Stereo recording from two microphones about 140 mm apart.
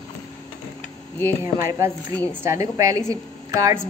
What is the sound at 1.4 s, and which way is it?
A woman's voice, 20° right (ahead or behind).